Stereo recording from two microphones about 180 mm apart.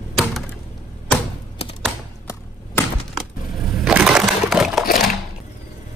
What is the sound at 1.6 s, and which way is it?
Typing, 35° left (ahead or behind).